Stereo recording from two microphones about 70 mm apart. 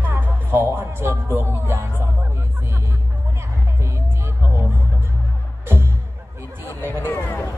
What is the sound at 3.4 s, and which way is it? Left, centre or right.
Music, right.